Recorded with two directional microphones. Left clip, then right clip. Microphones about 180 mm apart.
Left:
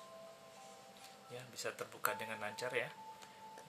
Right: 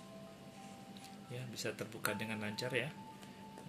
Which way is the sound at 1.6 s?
40° left (ahead or behind).